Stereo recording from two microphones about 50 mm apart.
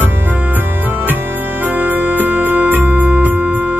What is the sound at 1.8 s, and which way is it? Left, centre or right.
Music, right.